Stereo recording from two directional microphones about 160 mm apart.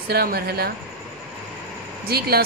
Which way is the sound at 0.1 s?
75° right (ahead or behind).